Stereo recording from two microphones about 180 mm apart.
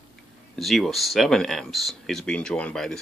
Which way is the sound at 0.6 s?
Centre (ahead or behind).